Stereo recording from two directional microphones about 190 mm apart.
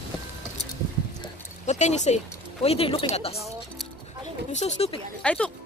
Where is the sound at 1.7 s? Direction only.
40° left (ahead or behind).